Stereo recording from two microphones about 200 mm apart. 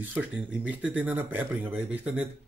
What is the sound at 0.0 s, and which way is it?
Speech, 10° right (ahead or behind).